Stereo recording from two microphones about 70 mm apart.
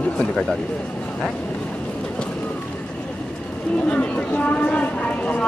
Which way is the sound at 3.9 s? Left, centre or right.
Centre.